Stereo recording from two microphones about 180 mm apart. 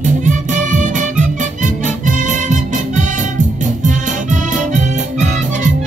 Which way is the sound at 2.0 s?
45° right (ahead or behind).